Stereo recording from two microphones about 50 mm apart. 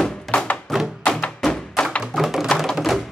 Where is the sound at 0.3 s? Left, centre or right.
Centre.